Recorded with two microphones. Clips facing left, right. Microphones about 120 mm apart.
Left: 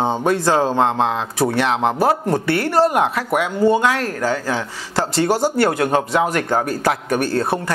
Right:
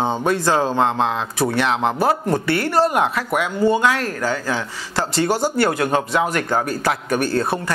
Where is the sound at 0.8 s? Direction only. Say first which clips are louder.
Left 1 dB; 50° left (ahead or behind).